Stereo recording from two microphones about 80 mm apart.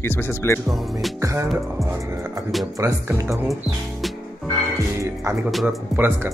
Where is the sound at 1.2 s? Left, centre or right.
Right.